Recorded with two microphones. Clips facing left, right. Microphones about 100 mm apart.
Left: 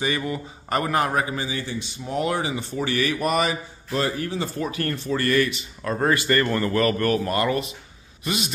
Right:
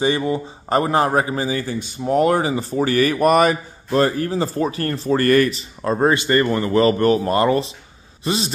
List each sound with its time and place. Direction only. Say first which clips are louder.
0.0 s a man's voice: right 7 dB; 25° right (ahead or behind)